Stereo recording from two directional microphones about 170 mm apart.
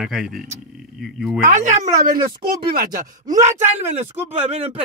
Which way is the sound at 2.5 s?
60° right (ahead or behind).